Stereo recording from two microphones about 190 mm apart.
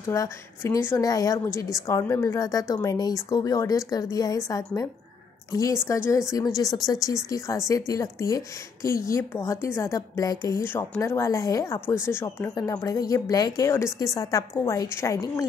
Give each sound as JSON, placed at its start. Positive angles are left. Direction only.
{"t": 0.1, "sound": "a woman's voice", "side_deg": 15}